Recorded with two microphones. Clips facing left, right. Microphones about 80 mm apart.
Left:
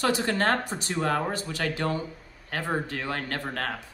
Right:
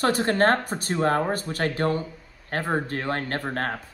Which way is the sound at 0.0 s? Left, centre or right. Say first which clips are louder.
Right 4 dB; right.